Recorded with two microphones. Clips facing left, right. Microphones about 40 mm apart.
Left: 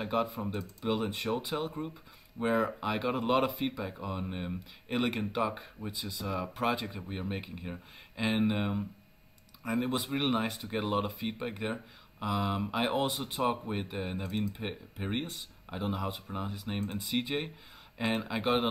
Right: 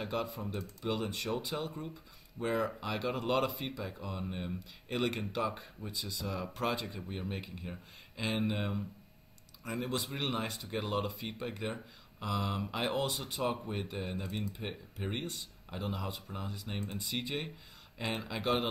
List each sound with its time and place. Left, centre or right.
0.0 s speech: centre